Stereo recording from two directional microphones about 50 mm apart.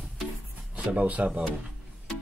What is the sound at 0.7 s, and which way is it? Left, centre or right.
Speech, right.